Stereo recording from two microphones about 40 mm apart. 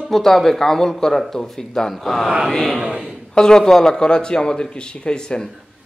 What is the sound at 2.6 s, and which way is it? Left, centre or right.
Speech, centre.